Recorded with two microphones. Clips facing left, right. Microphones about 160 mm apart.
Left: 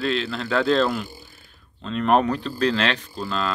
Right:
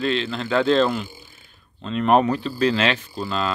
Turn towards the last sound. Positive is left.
turn(degrees=-5)  # may be behind; listen again after turning